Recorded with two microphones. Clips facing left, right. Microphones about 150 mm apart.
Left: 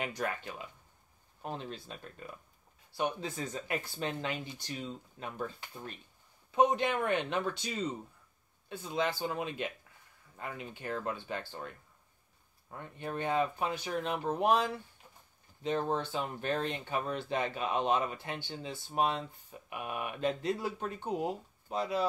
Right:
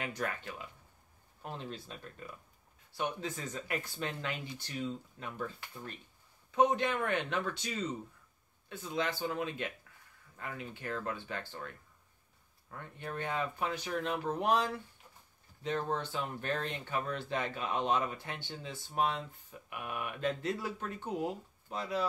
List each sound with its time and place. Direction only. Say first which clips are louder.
0.0 s speech: left 2 dB; 20° left (ahead or behind)
3.2 s speech: left 2 dB; 25° left (ahead or behind)